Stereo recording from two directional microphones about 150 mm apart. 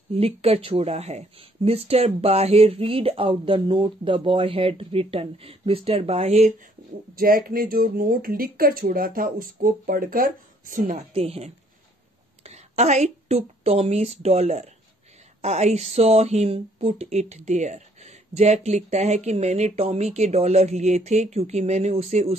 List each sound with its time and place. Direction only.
0.1 s speech: 40° right (ahead or behind)
7.2 s speech: 75° right (ahead or behind); by 11.1 s 60° right (ahead or behind)
11.1 s a woman's voice: 40° right (ahead or behind)